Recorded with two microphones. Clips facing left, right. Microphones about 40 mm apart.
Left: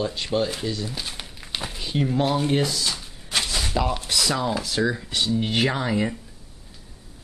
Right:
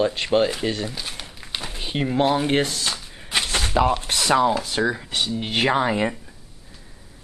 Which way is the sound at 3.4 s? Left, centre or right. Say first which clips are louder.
Right 3 dB; right.